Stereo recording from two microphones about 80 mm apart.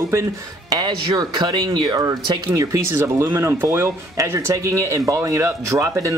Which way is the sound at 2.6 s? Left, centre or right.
Right.